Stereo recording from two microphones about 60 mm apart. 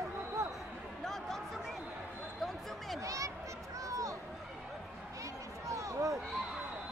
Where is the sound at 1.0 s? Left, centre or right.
Centre.